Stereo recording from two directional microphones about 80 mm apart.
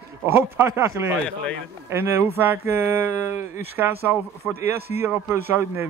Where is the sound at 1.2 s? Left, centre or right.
Centre.